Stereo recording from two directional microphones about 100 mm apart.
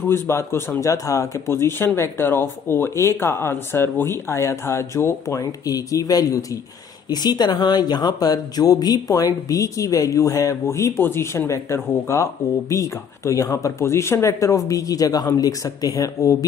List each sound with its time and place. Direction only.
0.1 s speech: 25° left (ahead or behind)